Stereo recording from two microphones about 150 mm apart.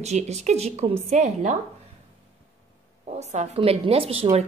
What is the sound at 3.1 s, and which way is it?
A woman's voice, 50° right (ahead or behind).